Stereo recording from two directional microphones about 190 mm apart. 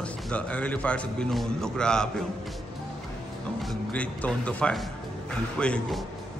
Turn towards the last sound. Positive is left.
turn(degrees=5)  # may be behind; listen again after turning